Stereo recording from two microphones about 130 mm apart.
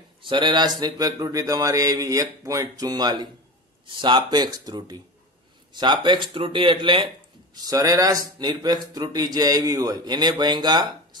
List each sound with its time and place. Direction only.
0.2 s a man's voice: 40° right (ahead or behind)
7.5 s a man's voice: 30° right (ahead or behind)